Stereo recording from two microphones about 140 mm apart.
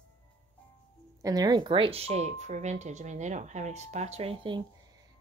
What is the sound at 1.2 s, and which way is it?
Speech, 25° right (ahead or behind).